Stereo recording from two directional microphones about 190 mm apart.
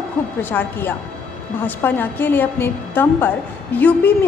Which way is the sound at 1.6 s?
10° left (ahead or behind).